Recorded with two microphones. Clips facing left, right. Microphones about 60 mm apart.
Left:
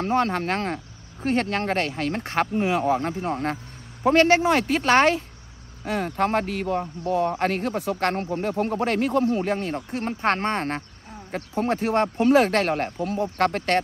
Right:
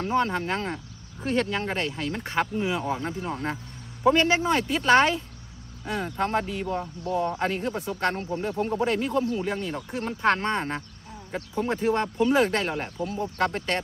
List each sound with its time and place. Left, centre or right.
0.0 s speech: left
1.2 s speech: left
1.6 s speech: left
2.1 s speech: left
4.1 s speech: left
9.2 s speech: left
11.5 s speech: left